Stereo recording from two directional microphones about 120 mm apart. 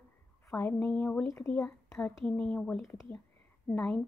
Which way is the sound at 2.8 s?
20° left (ahead or behind).